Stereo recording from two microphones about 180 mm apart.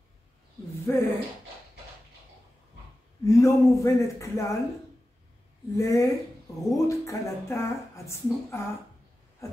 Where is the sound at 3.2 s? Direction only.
20° left (ahead or behind).